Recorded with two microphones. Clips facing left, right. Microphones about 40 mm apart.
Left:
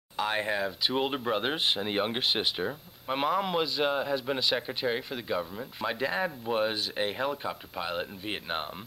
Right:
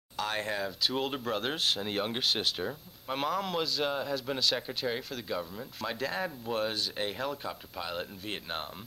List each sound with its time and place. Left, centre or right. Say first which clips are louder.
0.2 s speech: left 4 dB; centre